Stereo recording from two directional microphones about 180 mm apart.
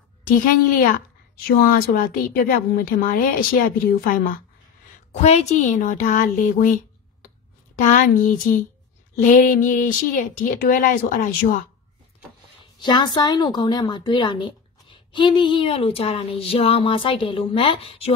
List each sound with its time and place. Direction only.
0.3 s a woman's voice: 50° left (ahead or behind)
5.1 s a woman's voice: 40° left (ahead or behind)
12.8 s a woman's voice: 25° left (ahead or behind)